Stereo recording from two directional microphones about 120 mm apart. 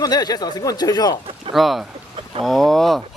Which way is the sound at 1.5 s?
Centre (ahead or behind).